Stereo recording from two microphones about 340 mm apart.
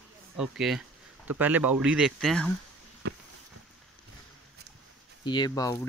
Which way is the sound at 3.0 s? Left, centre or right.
Right.